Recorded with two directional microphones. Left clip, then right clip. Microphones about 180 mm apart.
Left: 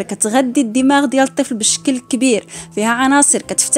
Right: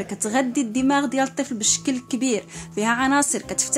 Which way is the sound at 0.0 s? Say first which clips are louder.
Left 7 dB; 35° left (ahead or behind).